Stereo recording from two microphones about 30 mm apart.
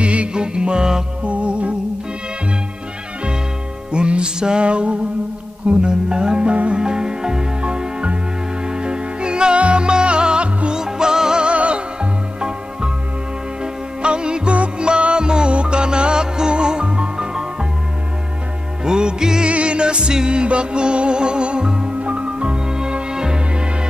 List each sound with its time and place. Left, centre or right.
0.0 s music: right
0.3 s music: right
1.2 s music: right
3.9 s music: right
4.6 s music: right
6.5 s music: right
6.8 s music: right
10.7 s music: right
11.4 s music: right
14.0 s music: right
17.3 s music: right
18.9 s music: right
19.5 s music: right
22.0 s music: right